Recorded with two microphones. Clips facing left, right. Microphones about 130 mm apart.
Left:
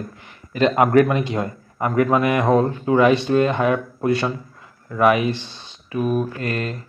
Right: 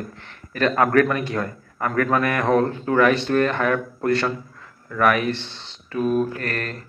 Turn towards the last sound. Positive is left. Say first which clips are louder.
# left 3 dB
turn(degrees=15)  # may be behind; listen again after turning